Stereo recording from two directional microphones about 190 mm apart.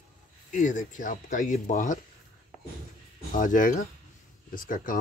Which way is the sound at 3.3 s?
45° left (ahead or behind).